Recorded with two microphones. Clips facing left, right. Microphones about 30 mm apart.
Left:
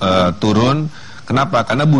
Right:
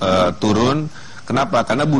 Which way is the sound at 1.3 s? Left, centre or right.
Centre.